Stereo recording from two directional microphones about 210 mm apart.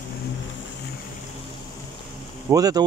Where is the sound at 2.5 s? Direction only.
15° right (ahead or behind).